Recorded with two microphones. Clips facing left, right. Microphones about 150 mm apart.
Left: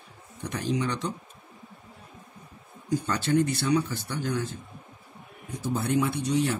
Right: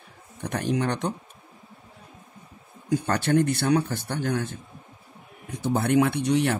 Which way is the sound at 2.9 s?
60° right (ahead or behind).